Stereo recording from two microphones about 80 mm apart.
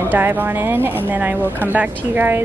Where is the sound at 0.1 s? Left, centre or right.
Right.